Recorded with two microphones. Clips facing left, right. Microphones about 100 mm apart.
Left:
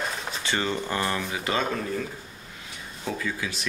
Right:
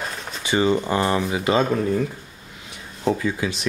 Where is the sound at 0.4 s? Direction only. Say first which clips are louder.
Right 9 dB; 15° right (ahead or behind).